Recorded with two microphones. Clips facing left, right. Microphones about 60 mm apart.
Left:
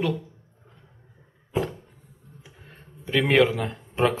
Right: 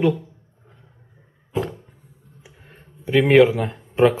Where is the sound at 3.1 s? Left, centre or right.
Centre.